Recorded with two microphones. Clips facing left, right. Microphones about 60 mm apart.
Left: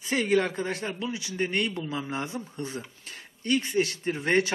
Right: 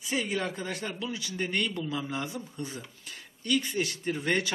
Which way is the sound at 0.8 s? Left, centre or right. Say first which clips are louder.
Left 2 dB; left.